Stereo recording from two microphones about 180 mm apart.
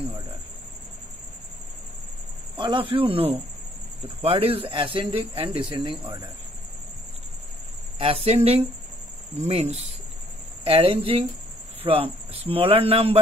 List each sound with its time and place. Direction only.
2.5 s speech: 25° right (ahead or behind)
8.0 s speech: 35° right (ahead or behind)